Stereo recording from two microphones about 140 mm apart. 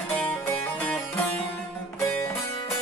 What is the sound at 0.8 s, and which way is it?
Music, 5° left (ahead or behind).